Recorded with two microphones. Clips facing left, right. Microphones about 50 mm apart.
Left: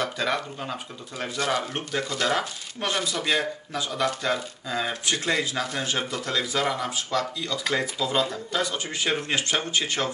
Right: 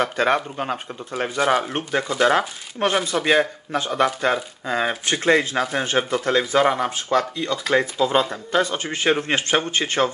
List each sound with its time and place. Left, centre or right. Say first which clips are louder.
0.0 s speech: right 7 dB; right